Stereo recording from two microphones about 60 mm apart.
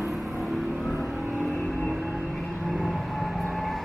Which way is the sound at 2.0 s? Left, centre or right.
Right.